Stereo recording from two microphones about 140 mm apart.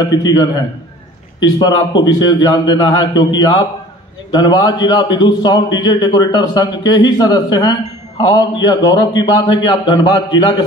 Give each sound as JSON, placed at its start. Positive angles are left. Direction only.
{"t": 0.0, "sound": "a man's voice", "side_deg": 30}
{"t": 2.0, "sound": "a man's voice", "side_deg": 30}